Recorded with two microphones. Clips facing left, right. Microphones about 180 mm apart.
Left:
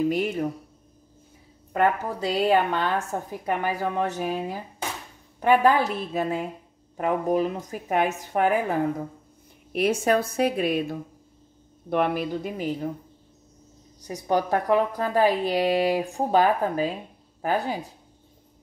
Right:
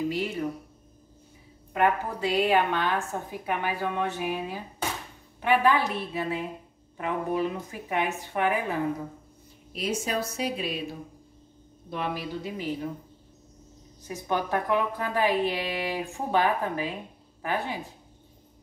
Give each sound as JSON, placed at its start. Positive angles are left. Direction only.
{"t": 0.1, "sound": "a woman's voice", "side_deg": 50}
{"t": 2.5, "sound": "a woman's voice", "side_deg": 40}
{"t": 9.7, "sound": "a woman's voice", "side_deg": 60}
{"t": 14.0, "sound": "a woman's voice", "side_deg": 35}